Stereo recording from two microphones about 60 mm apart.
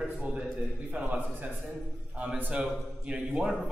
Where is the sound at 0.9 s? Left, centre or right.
Right.